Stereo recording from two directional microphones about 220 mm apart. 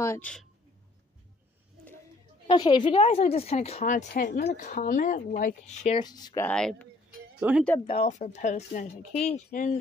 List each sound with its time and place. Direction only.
0.0 s speech: 10° left (ahead or behind)
2.4 s a woman's voice: 20° left (ahead or behind)
4.1 s speech: 45° left (ahead or behind); by 6.0 s 30° left (ahead or behind)
6.0 s speech: 20° left (ahead or behind)
7.3 s speech: 5° right (ahead or behind)
7.8 s speech: 30° left (ahead or behind)